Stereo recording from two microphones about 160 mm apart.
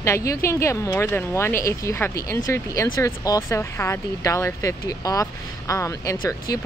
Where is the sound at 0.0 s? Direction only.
20° left (ahead or behind).